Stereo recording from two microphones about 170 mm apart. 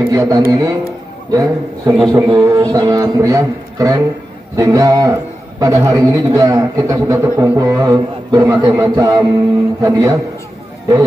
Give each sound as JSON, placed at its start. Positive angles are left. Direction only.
{"t": 0.0, "sound": "a man's voice", "side_deg": -20}